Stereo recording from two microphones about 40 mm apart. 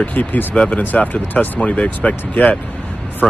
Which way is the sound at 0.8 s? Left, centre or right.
Left.